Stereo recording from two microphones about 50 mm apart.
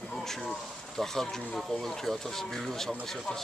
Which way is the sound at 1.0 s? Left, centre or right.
Centre.